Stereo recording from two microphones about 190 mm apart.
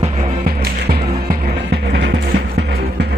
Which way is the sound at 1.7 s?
65° right (ahead or behind).